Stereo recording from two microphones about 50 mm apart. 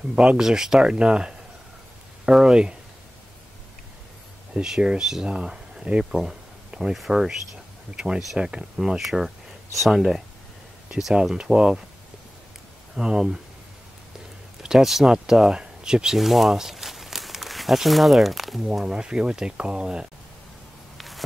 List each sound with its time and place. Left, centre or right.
0.1 s speech: centre
4.6 s speech: centre
12.9 s speech: centre
14.6 s speech: centre
16.2 s speech: centre
18.9 s speech: centre